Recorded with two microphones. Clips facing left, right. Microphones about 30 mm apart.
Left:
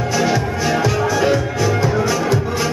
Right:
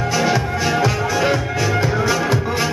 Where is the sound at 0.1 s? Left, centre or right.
Centre.